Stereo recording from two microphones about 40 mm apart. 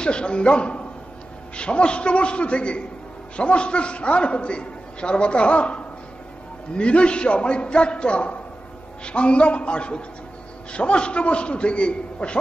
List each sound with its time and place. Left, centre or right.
0.0 s a man's voice: left